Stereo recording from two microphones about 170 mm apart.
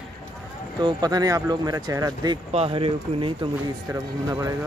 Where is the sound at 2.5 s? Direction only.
35° right (ahead or behind).